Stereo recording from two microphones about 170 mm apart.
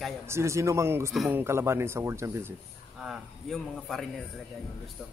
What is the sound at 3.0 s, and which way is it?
Speech, centre (ahead or behind).